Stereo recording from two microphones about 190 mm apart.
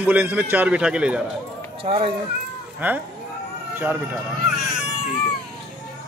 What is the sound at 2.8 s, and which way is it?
Speech, 10° right (ahead or behind).